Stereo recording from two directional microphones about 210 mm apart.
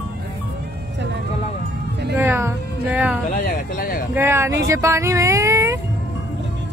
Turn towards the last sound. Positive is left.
turn(degrees=-15)  # may be behind; listen again after turning